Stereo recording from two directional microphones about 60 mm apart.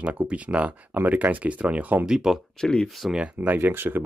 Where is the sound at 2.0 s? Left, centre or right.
Centre.